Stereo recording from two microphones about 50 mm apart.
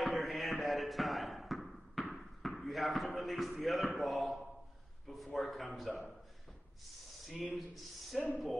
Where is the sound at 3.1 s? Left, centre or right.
Centre.